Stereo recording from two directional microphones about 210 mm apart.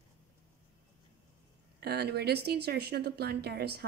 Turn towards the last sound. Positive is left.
turn(degrees=-50)  # may be behind; listen again after turning